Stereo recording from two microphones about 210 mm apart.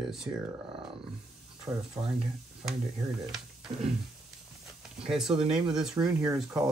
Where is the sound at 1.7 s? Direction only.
15° right (ahead or behind).